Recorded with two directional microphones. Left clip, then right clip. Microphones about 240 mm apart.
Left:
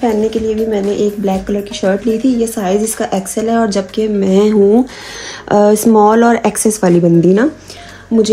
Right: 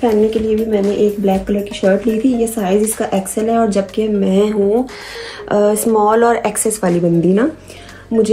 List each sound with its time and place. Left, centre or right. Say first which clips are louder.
0.0 s a woman's voice: even; left